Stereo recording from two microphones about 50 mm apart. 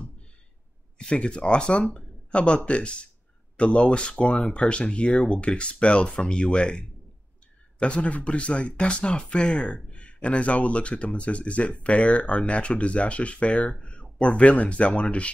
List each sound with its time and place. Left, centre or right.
0.9 s speech: left